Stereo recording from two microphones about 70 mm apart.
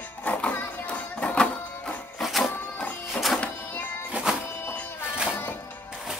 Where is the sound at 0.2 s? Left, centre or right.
Left.